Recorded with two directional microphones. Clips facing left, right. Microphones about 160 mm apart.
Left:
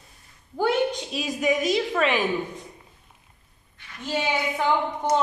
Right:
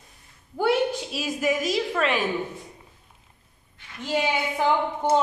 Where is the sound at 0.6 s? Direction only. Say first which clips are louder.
Even; 5° right (ahead or behind).